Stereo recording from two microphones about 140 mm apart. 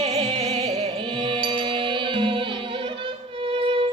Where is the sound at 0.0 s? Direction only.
45° right (ahead or behind).